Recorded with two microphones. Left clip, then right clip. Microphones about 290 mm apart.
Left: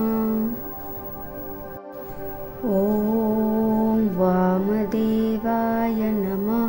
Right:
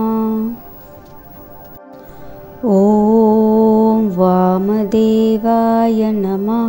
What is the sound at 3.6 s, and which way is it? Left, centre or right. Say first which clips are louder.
Mantra: right 10 dB; centre.